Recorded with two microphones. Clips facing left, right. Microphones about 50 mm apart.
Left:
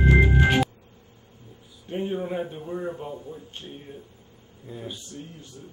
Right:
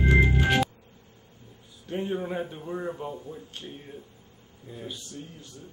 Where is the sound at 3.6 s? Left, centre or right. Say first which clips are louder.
Left 1 dB; centre.